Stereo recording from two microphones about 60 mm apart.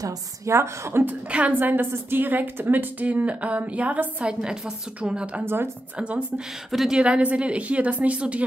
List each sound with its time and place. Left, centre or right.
0.5 s a woman's voice: right
1.0 s a woman's voice: right
1.5 s a woman's voice: right; by 5.4 s centre
5.4 s speech: right
5.9 s a woman's voice: centre
6.7 s a woman's voice: centre
7.0 s a woman's voice: centre